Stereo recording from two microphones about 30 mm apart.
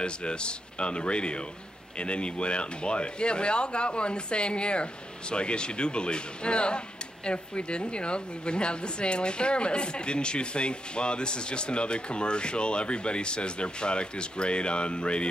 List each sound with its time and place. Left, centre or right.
0.0 s a woman's voice: left